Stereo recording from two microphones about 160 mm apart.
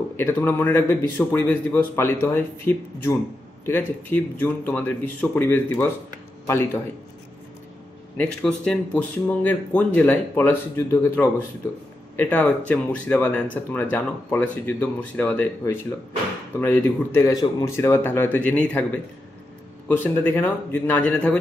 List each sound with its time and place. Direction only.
0.2 s speech: 15° left (ahead or behind)
8.2 s speech: 5° left (ahead or behind)
15.6 s speech: 20° left (ahead or behind)
19.9 s speech: 15° left (ahead or behind)